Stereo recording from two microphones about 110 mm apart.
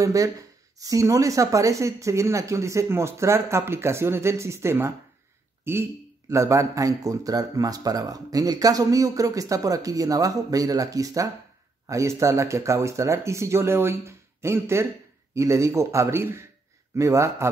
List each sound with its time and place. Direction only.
0.0 s speech: 30° right (ahead or behind)